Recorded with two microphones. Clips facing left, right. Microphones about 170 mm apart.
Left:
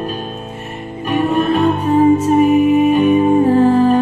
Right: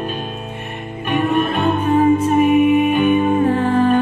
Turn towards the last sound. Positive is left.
turn(degrees=35)  # may be behind; listen again after turning